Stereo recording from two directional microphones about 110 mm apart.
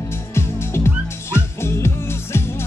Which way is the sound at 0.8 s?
25° left (ahead or behind).